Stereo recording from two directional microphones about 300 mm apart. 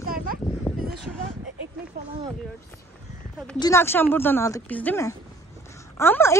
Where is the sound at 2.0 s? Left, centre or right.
Right.